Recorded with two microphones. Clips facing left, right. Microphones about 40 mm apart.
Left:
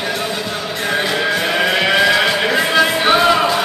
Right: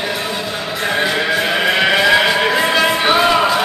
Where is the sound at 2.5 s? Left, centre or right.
Centre.